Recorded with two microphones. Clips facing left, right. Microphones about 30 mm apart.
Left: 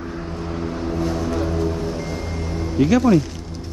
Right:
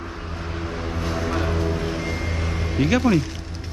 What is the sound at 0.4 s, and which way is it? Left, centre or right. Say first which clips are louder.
Vehicle: left 3 dB; centre.